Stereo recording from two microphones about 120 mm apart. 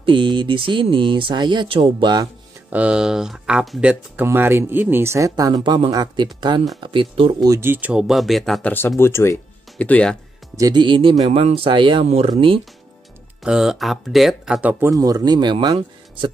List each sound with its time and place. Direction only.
0.0 s speech: 45° right (ahead or behind)
2.7 s speech: 10° right (ahead or behind)
3.9 s speech: 15° right (ahead or behind); by 7.3 s 45° right (ahead or behind)
7.4 s speech: 20° right (ahead or behind); by 8.6 s centre (ahead or behind)
8.6 s speech: 20° left (ahead or behind)
9.8 s speech: 10° left (ahead or behind)
10.6 s speech: 40° right (ahead or behind)
13.4 s speech: 5° right (ahead or behind)
14.7 s speech: 25° right (ahead or behind); by 16.3 s 40° right (ahead or behind)